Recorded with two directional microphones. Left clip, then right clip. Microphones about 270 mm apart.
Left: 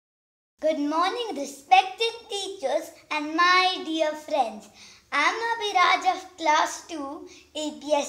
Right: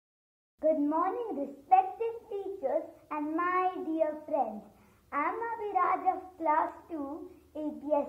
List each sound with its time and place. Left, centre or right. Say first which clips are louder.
0.6 s a child's voice: left 4 dB; left